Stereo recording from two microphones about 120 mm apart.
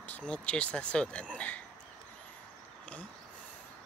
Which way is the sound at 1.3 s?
10° left (ahead or behind).